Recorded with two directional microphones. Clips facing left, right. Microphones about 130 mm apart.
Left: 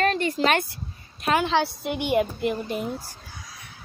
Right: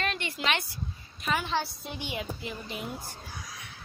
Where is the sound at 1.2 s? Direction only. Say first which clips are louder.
Left 8 dB; 80° left; by 2.8 s 50° left (ahead or behind).